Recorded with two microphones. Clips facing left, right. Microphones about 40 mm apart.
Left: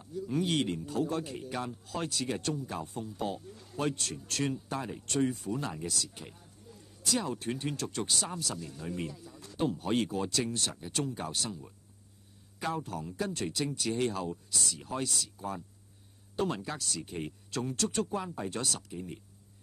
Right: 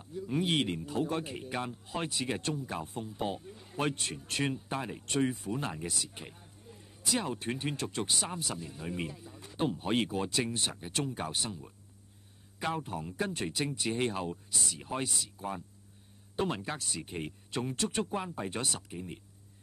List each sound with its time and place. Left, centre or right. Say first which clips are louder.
0.0 s speech: even; right
12.5 s speech: even; right